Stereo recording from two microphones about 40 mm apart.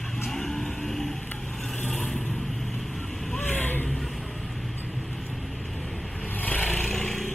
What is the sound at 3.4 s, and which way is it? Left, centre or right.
Vehicle, left.